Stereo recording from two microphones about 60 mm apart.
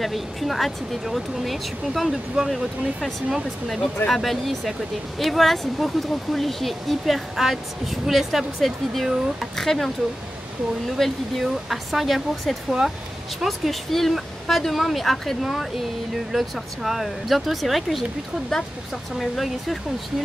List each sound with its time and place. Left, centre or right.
0.0 s speech: centre
11.0 s speech: centre
19.1 s speech: centre